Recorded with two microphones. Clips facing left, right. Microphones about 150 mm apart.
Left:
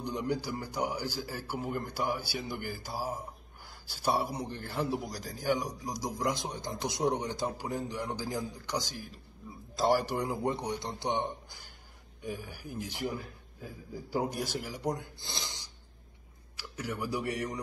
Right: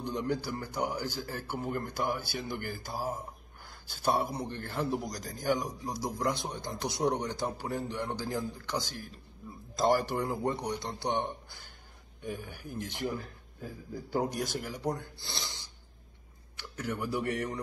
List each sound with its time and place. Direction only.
0.0 s a man's voice: 10° left (ahead or behind)
15.0 s a man's voice: 20° left (ahead or behind)
16.5 s a sound: 10° left (ahead or behind)